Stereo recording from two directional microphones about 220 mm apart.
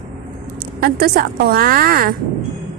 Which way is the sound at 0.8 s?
45° right (ahead or behind).